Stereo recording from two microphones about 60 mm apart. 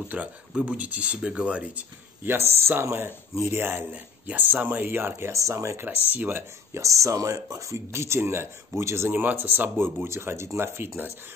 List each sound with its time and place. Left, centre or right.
0.1 s speech: right
2.2 s speech: right
3.9 s speech: right
5.3 s speech: right
5.8 s speech: right
6.7 s speech: right
9.1 s speech: right